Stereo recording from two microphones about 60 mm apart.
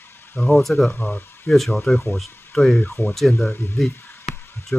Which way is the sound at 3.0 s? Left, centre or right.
Left.